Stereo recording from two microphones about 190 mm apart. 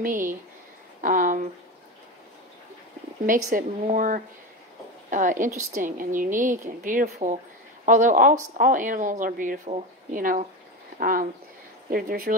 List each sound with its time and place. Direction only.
0.0 s a woman's voice: 45° right (ahead or behind)
3.3 s a woman's voice: 45° right (ahead or behind)